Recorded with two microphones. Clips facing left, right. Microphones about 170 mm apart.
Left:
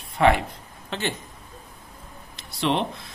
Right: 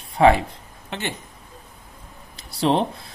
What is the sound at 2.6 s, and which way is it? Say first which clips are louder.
Speech: right 4 dB; 35° right (ahead or behind).